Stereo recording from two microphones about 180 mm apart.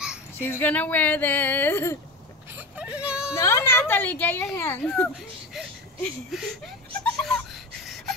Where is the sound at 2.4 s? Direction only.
10° right (ahead or behind).